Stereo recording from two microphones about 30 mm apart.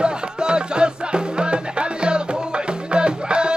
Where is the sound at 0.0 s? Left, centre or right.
Right.